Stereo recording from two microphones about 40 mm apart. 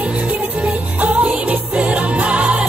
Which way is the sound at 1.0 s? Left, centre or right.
Right.